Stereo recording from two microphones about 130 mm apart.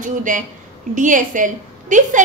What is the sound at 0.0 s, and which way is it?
A woman's voice, 90° right.